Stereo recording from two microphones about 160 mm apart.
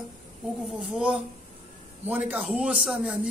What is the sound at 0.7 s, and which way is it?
A man's voice, 5° right (ahead or behind).